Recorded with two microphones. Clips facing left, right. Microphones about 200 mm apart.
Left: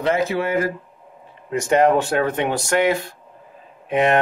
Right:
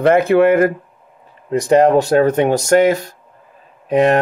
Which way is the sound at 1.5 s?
35° right (ahead or behind).